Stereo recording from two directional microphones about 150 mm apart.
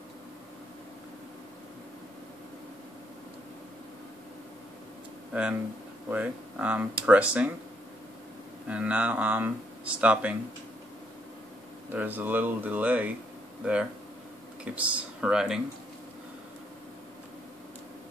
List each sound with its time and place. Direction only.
5.3 s speech: 10° right (ahead or behind)
8.6 s speech: 10° right (ahead or behind)
11.9 s speech: 10° right (ahead or behind)